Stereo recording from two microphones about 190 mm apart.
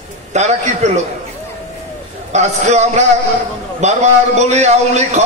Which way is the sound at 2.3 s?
35° right (ahead or behind).